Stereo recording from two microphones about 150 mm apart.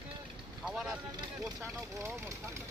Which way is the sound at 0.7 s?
5° right (ahead or behind).